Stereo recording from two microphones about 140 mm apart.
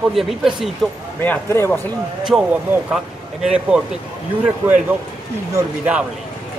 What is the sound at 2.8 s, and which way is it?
Speech, 5° right (ahead or behind).